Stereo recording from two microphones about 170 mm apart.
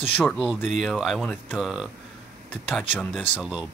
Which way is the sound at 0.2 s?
10° left (ahead or behind).